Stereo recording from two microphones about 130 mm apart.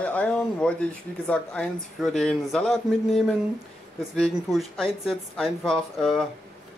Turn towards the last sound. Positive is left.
turn(degrees=0)  # may be behind; listen again after turning